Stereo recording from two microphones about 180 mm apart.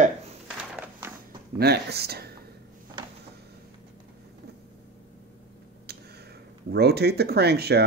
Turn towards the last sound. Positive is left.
turn(degrees=-65)  # may be behind; listen again after turning